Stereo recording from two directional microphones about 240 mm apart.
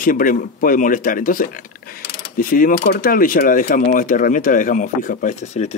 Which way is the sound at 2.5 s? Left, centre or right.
Left.